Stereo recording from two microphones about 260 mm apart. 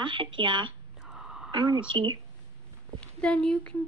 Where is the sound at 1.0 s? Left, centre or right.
Centre.